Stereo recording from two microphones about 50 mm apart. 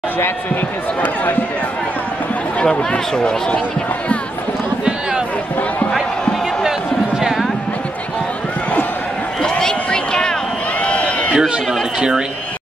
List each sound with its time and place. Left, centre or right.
1.0 s speech: left
2.6 s speech: centre
7.2 s music: centre
9.4 s a sound: centre
10.8 s crowd: left
11.3 s speech: centre